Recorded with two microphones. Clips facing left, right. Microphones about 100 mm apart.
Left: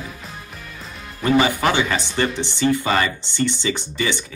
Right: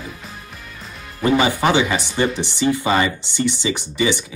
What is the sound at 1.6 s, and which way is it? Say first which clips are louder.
Speech: right 2 dB; 15° right (ahead or behind).